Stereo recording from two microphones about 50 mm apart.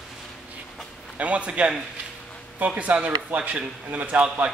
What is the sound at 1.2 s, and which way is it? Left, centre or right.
Speech, right.